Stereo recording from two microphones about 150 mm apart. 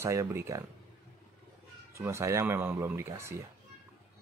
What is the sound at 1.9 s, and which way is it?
Speech, 20° right (ahead or behind).